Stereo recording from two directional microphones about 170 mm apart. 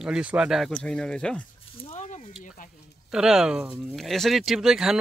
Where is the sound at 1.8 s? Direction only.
45° left (ahead or behind).